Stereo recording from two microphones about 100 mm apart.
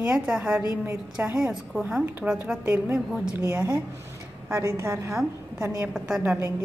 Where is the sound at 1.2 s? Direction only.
15° right (ahead or behind).